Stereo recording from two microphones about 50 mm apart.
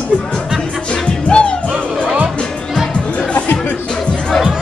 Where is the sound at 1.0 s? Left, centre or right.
Centre.